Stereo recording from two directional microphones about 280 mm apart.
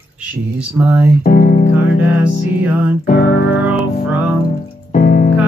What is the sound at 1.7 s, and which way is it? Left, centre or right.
Music, centre.